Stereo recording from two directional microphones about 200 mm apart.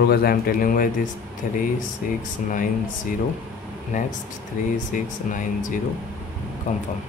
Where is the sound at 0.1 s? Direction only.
50° left (ahead or behind).